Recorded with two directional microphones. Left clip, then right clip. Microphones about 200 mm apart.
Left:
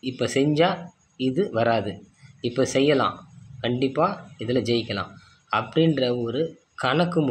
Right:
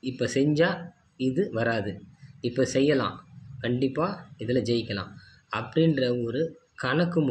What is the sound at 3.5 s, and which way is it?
Speech, 10° right (ahead or behind).